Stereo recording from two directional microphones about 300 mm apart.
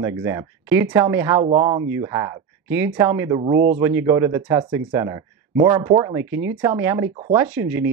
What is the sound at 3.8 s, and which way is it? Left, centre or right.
Speech, centre.